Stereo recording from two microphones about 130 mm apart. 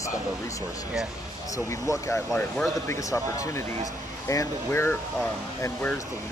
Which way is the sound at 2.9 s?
25° left (ahead or behind).